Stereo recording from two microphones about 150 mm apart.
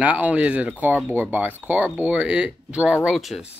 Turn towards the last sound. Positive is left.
turn(degrees=0)  # may be behind; listen again after turning